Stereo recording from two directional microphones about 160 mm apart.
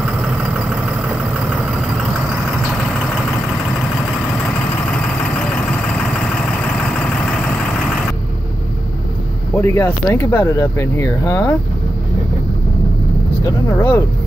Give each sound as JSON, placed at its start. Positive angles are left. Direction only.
{"t": 4.9, "sound": "vehicle", "side_deg": 5}
{"t": 9.6, "sound": "speech", "side_deg": 15}
{"t": 13.7, "sound": "speech", "side_deg": 10}